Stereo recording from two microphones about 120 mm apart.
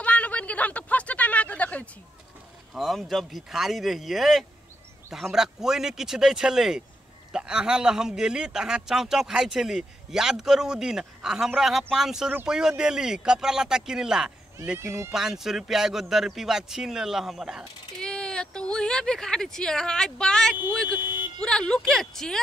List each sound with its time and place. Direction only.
0.0 s a sound: 10° left (ahead or behind)
2.7 s a man's voice: centre (ahead or behind)
14.8 s speech: 20° right (ahead or behind)
15.1 s a man's voice: 5° right (ahead or behind)
18.0 s a man's voice: 5° left (ahead or behind)